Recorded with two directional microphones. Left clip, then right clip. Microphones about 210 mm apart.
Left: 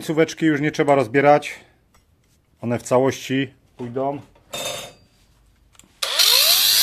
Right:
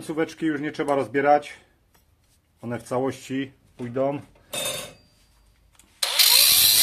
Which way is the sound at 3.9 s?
5° right (ahead or behind).